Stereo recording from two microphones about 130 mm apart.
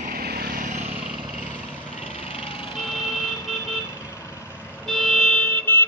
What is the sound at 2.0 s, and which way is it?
Vehicle, 50° left (ahead or behind).